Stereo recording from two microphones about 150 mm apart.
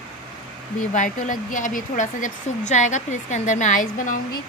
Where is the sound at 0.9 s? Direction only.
55° left (ahead or behind).